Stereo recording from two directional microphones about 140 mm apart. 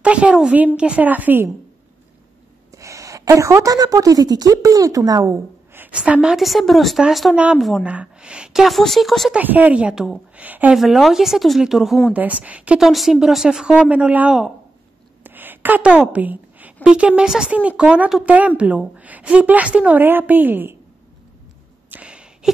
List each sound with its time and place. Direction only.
0.0 s a woman's voice: 10° right (ahead or behind)
2.7 s a woman's voice: 20° right (ahead or behind); by 9.4 s centre (ahead or behind)
9.4 s a woman's voice: 10° right (ahead or behind)
15.2 s a sound: 15° right (ahead or behind)
16.8 s a woman's voice: 10° right (ahead or behind)
21.9 s a sound: 10° right (ahead or behind)